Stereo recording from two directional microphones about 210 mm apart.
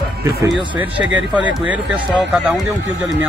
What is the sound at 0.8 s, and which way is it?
Speech, 5° right (ahead or behind).